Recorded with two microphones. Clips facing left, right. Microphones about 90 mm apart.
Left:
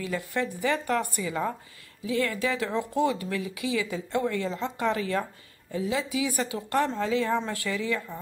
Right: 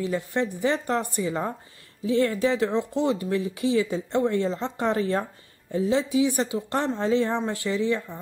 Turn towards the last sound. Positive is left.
turn(degrees=-25)  # may be behind; listen again after turning